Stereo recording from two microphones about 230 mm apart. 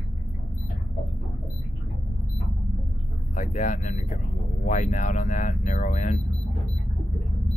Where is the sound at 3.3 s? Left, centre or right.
Left.